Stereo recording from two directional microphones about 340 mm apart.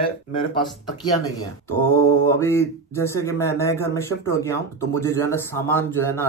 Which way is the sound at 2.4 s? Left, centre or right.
Centre.